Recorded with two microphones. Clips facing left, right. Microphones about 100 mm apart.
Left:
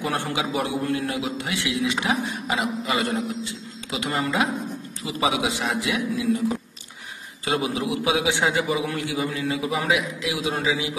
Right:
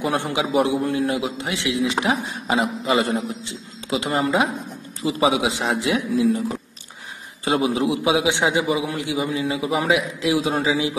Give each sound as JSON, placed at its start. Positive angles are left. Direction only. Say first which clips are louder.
{"t": 0.1, "sound": "a man's voice", "louder": "right 5 dB", "side_deg": -20}
{"t": 7.4, "sound": "a man's voice", "louder": "right 5 dB", "side_deg": -30}